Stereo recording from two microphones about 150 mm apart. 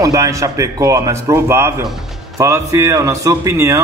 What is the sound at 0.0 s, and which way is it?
A man's voice, 20° right (ahead or behind).